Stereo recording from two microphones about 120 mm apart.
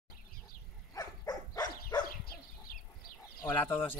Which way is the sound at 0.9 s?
35° left (ahead or behind).